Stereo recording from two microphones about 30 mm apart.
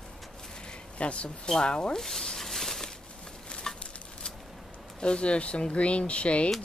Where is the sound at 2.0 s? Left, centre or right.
Centre.